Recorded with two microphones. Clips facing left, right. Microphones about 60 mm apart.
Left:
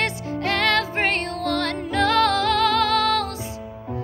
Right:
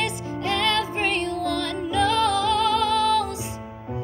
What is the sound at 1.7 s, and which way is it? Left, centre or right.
Music, left.